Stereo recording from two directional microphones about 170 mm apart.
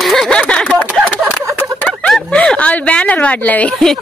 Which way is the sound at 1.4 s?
15° right (ahead or behind).